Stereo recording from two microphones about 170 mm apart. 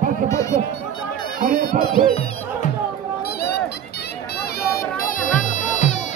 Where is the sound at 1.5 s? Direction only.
50° right (ahead or behind).